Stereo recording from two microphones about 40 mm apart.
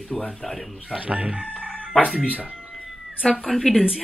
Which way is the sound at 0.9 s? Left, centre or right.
Right.